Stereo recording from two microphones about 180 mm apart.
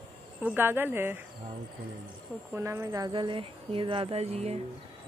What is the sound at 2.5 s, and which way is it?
Speech, 15° right (ahead or behind).